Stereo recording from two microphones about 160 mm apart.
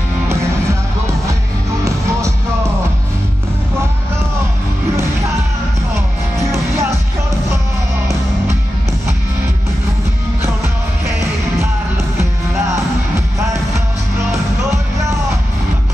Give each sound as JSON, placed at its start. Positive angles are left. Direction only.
{"t": 1.9, "sound": "music", "side_deg": -20}
{"t": 6.3, "sound": "music", "side_deg": -20}
{"t": 12.2, "sound": "music", "side_deg": -20}